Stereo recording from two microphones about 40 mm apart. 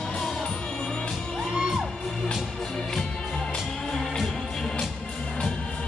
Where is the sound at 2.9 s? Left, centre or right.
Centre.